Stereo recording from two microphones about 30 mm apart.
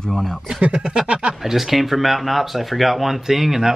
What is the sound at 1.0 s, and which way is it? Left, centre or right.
Speech, right.